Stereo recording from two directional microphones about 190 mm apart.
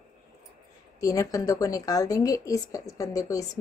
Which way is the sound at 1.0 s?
15° left (ahead or behind).